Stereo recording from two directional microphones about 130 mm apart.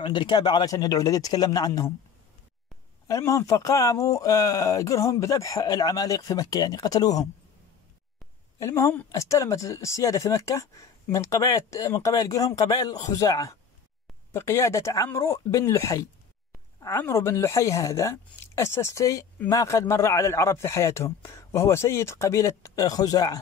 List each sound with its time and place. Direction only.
0.0 s speech: 35° left (ahead or behind)
3.1 s speech: 20° left (ahead or behind)
8.5 s speech: 25° left (ahead or behind)